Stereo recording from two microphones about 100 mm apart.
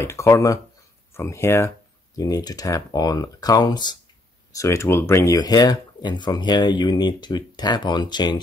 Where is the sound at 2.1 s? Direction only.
40° left (ahead or behind).